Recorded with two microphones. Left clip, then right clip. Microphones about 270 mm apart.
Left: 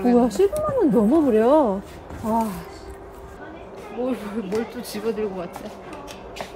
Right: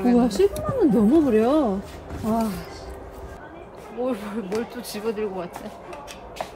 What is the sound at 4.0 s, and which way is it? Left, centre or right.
Speech, centre.